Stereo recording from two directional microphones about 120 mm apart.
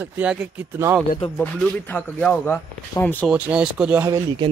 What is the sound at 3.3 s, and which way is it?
Speech, 10° right (ahead or behind).